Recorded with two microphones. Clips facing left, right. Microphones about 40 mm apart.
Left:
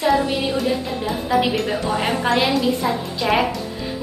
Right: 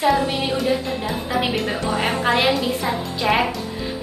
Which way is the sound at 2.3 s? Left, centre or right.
Right.